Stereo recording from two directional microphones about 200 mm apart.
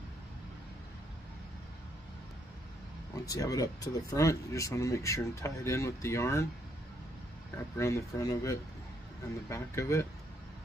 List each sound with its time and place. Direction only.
3.3 s speech: 15° left (ahead or behind)
7.7 s speech: 15° left (ahead or behind)